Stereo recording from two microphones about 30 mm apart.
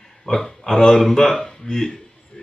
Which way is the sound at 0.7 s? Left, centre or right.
Centre.